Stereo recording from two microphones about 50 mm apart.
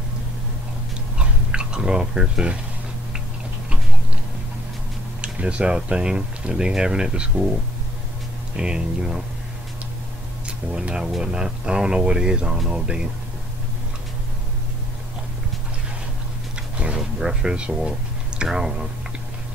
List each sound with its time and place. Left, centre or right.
1.1 s a sound: centre
5.2 s speech: right
8.5 s speech: centre
10.4 s speech: centre
16.7 s a sound: right
17.2 s speech: centre